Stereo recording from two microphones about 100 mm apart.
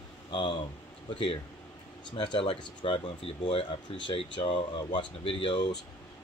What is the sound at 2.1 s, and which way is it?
Speech, 55° left (ahead or behind).